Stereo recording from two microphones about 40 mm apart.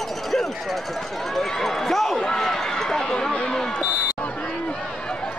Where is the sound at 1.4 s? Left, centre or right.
Centre.